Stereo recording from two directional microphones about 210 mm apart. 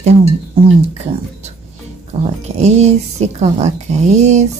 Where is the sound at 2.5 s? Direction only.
30° right (ahead or behind).